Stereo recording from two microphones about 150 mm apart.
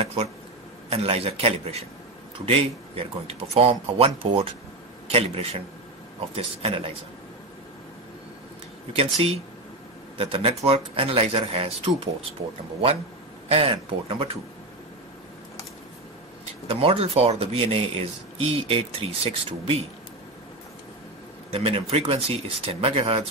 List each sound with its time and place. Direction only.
0.8 s a man's voice: 45° right (ahead or behind)
8.9 s speech: 40° right (ahead or behind)
13.5 s speech: 40° right (ahead or behind)
16.6 s speech: 40° right (ahead or behind)
21.5 s speech: 40° right (ahead or behind)